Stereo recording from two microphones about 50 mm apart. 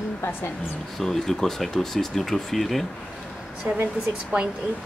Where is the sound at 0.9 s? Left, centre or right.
Centre.